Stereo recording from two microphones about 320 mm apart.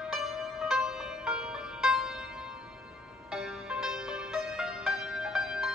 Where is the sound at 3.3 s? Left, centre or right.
Centre.